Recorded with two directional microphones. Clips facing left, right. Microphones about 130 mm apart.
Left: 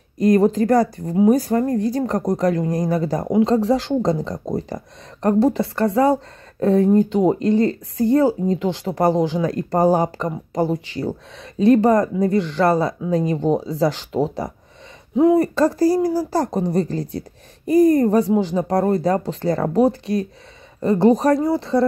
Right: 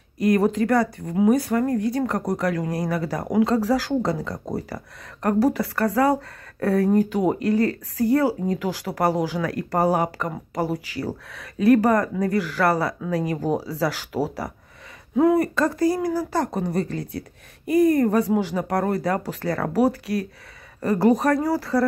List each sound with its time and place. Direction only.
0.2 s a woman's voice: 30° left (ahead or behind)